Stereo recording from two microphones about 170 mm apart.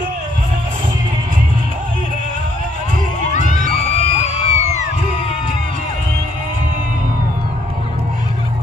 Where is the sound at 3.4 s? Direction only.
55° right (ahead or behind).